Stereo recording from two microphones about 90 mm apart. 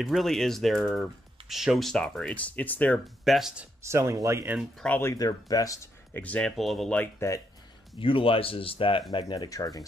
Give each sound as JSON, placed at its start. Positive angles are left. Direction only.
{"t": 0.0, "sound": "speech", "side_deg": 0}
{"t": 2.3, "sound": "speech", "side_deg": 15}
{"t": 3.3, "sound": "speech", "side_deg": -5}
{"t": 3.8, "sound": "speech", "side_deg": -30}
{"t": 5.1, "sound": "speech", "side_deg": 45}
{"t": 6.1, "sound": "speech", "side_deg": 15}
{"t": 6.5, "sound": "speech", "side_deg": 0}
{"t": 7.2, "sound": "speech", "side_deg": 35}
{"t": 8.0, "sound": "speech", "side_deg": 90}
{"t": 9.1, "sound": "speech", "side_deg": 55}